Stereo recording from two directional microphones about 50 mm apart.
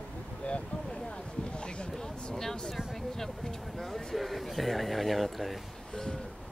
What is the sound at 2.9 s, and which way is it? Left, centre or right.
Speech, centre.